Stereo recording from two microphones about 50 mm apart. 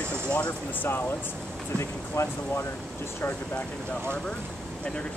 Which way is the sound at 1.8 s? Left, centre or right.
Left.